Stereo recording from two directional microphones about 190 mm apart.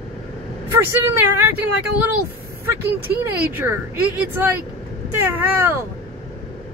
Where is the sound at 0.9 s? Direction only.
10° right (ahead or behind).